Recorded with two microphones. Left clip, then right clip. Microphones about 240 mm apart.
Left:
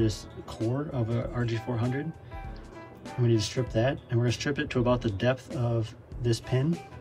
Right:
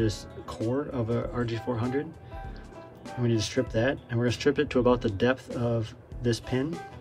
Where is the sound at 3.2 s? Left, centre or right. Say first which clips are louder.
Even; right.